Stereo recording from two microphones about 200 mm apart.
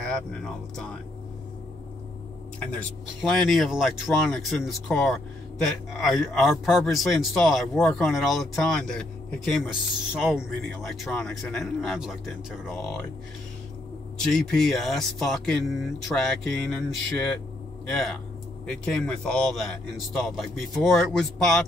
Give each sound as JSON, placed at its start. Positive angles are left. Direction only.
{"t": 0.0, "sound": "speech", "side_deg": 5}
{"t": 3.2, "sound": "speech", "side_deg": 0}
{"t": 14.2, "sound": "speech", "side_deg": 0}
{"t": 19.2, "sound": "speech", "side_deg": 5}